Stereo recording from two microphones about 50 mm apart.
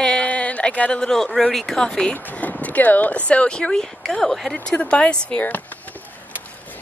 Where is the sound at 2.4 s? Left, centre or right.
Left.